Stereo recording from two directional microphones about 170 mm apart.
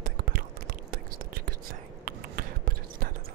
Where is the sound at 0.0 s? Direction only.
60° right (ahead or behind).